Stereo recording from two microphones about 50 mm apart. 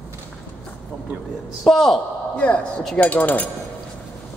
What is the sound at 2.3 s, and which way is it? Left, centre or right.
Speech, left.